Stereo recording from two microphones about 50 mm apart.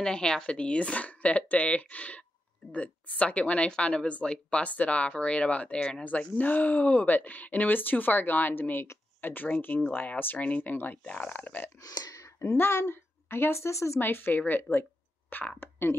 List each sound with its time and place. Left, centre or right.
0.0 s speech: centre
6.0 s speech: left
11.1 s speech: left
12.2 s a sound: left
12.5 s a woman's voice: left
13.9 s a woman's voice: left